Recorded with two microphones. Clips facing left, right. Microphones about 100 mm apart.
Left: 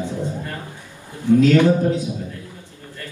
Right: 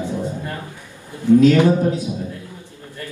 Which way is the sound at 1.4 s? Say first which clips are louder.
Right 1 dB; 20° right (ahead or behind).